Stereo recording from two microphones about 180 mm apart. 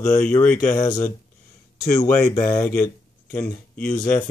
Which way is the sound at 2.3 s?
15° left (ahead or behind).